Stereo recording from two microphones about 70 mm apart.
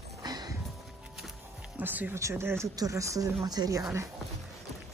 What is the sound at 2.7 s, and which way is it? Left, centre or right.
Speech, right.